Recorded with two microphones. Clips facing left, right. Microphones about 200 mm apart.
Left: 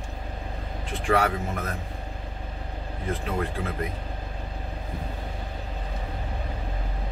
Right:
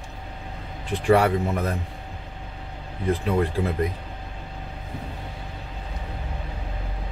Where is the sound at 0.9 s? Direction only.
35° right (ahead or behind).